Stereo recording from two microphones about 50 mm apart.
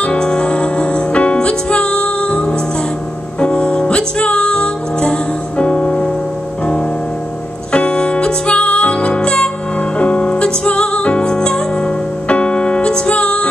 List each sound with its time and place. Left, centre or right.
0.0 s music: centre
7.7 s music: centre